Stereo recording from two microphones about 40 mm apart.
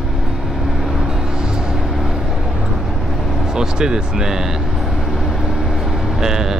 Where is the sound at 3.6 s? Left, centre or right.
Centre.